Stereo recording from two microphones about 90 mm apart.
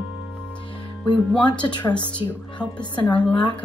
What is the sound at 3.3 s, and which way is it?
Speech, 60° left (ahead or behind).